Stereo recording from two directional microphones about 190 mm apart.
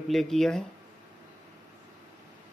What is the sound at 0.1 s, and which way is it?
Speech, centre (ahead or behind).